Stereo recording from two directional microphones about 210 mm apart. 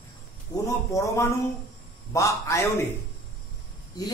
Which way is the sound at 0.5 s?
15° left (ahead or behind).